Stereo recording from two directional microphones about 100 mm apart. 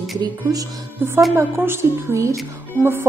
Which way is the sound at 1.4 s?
20° right (ahead or behind).